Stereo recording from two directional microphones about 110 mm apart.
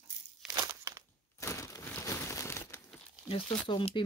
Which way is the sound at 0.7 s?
25° right (ahead or behind).